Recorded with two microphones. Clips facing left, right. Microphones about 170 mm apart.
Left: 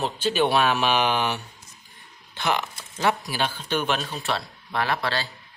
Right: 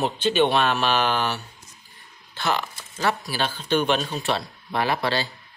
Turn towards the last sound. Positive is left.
turn(degrees=-15)  # may be behind; listen again after turning